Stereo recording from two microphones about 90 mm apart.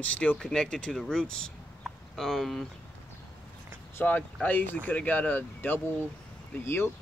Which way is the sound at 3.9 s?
20° left (ahead or behind).